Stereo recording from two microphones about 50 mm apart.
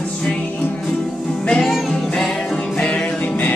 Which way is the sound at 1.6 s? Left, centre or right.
Centre.